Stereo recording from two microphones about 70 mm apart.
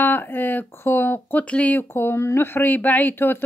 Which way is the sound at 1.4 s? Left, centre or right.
Centre.